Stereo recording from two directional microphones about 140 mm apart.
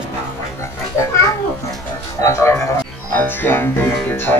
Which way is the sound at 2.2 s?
20° left (ahead or behind).